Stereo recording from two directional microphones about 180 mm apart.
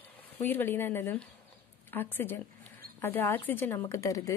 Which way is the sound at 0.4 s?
10° left (ahead or behind).